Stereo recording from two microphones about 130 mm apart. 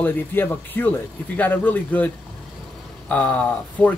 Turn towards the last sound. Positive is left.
turn(degrees=10)  # may be behind; listen again after turning